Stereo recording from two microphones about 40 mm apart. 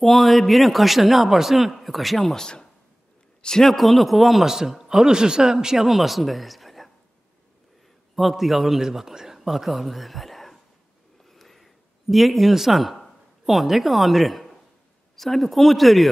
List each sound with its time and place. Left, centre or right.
0.0 s speech: centre
2.3 s speech: centre
3.6 s speech: centre
5.9 s speech: centre
8.2 s speech: centre
11.2 s a sound: centre
15.1 s speech: centre